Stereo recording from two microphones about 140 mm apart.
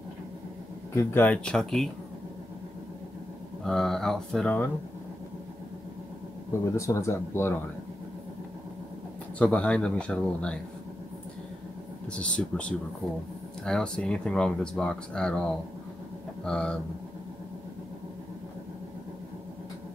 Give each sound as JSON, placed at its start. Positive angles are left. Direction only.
{"t": 0.9, "sound": "speech", "side_deg": 15}
{"t": 3.6, "sound": "speech", "side_deg": 5}
{"t": 6.6, "sound": "speech", "side_deg": 20}
{"t": 9.4, "sound": "a man's voice", "side_deg": 10}
{"t": 12.1, "sound": "a man's voice", "side_deg": 10}